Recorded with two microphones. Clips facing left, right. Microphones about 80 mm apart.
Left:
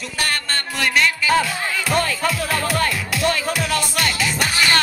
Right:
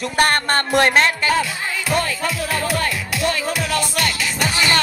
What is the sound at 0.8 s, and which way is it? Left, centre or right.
Speech, right.